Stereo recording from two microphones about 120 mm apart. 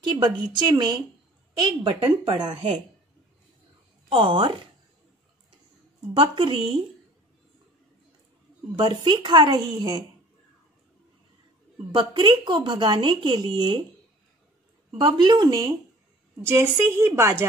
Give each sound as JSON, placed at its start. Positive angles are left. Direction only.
{"t": 0.0, "sound": "a woman's voice", "side_deg": -40}
{"t": 4.1, "sound": "a woman's voice", "side_deg": -45}
{"t": 6.1, "sound": "a woman's voice", "side_deg": -45}
{"t": 8.7, "sound": "speech", "side_deg": -40}
{"t": 11.9, "sound": "speech", "side_deg": -40}
{"t": 15.0, "sound": "speech", "side_deg": -40}
{"t": 16.4, "sound": "a woman's voice", "side_deg": -25}